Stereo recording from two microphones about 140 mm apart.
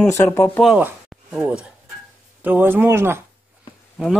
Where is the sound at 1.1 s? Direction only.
5° right (ahead or behind).